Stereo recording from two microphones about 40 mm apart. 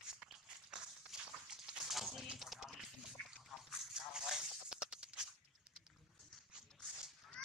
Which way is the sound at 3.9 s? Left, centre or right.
Centre.